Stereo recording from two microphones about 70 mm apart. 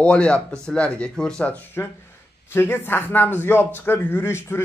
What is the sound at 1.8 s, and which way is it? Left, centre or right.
Speech, left.